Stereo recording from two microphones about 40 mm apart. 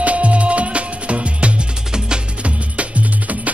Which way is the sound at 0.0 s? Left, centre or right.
Right.